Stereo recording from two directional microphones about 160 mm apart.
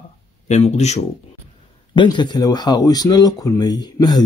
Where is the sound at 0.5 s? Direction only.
45° left (ahead or behind).